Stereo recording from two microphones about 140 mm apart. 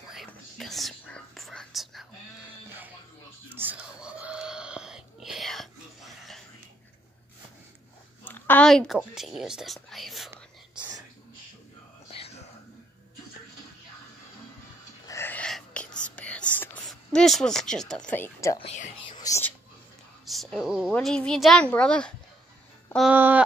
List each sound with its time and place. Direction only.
0.3 s whispering: centre (ahead or behind)
3.5 s a sound: 10° right (ahead or behind)
8.3 s a sound: 10° left (ahead or behind)
8.6 s speech: centre (ahead or behind)
12.1 s whispering: 45° left (ahead or behind)
15.0 s whispering: 15° left (ahead or behind)
16.8 s speech: 5° left (ahead or behind); by 18.6 s 20° left (ahead or behind)
18.6 s speech: 50° left (ahead or behind)
19.1 s whispering: 25° left (ahead or behind)
20.2 s a sound: 5° left (ahead or behind)
20.9 s a child's voice: 5° left (ahead or behind)
23.1 s speech: 15° right (ahead or behind)